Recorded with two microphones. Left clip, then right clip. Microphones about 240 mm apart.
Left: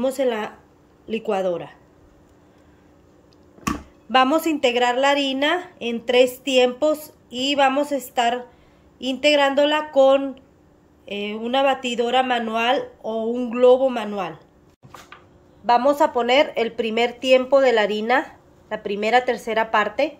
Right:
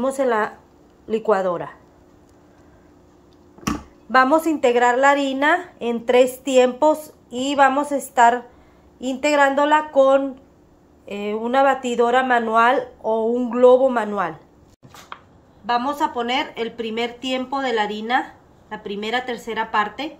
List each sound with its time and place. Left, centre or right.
0.2 s a woman's voice: centre
4.1 s a woman's voice: centre
15.6 s speech: left